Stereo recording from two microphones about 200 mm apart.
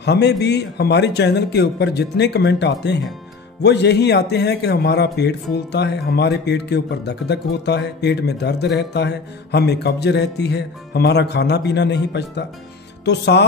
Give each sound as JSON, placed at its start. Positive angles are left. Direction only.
{"t": 0.0, "sound": "a man's voice", "side_deg": 60}